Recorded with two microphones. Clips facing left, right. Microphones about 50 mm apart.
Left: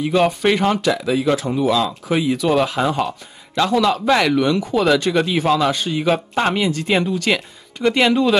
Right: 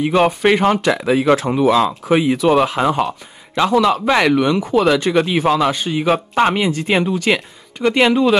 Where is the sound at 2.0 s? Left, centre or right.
Right.